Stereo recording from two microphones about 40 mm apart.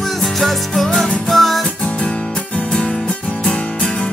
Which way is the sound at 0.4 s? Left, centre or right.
Centre.